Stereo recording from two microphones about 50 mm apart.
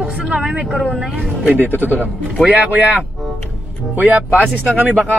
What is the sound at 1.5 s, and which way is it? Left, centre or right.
Speech, right.